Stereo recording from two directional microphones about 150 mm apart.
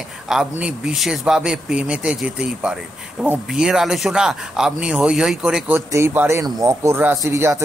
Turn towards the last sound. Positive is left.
turn(degrees=-20)  # may be behind; listen again after turning